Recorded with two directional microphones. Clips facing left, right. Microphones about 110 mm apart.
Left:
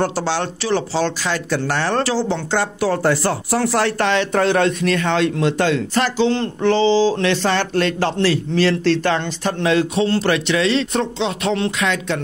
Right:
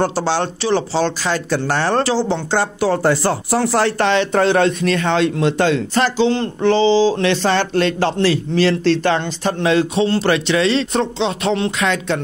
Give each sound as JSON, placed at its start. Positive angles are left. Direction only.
{"t": 0.0, "sound": "speech", "side_deg": -30}
{"t": 11.7, "sound": "speech", "side_deg": -35}